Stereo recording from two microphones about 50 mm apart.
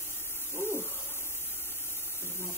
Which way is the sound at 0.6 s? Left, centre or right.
Left.